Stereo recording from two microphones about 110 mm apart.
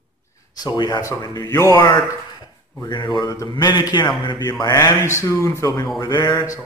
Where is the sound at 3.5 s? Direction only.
40° left (ahead or behind).